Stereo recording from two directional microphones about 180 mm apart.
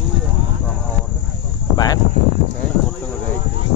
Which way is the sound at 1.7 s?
20° left (ahead or behind).